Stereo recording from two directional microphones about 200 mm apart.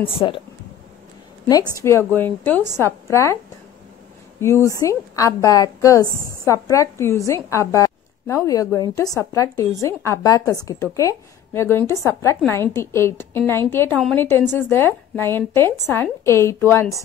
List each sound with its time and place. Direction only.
0.1 s speech: 25° left (ahead or behind)
1.5 s a woman's voice: 15° left (ahead or behind)
4.4 s a woman's voice: 15° left (ahead or behind)